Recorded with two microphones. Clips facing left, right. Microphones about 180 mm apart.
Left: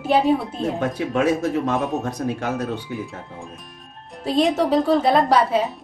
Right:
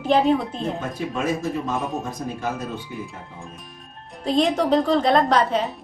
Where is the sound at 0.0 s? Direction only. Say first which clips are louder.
Even; 5° left (ahead or behind).